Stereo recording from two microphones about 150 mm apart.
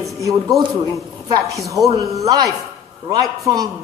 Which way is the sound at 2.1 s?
25° right (ahead or behind).